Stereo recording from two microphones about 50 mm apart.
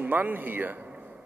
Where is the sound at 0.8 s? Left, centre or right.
Right.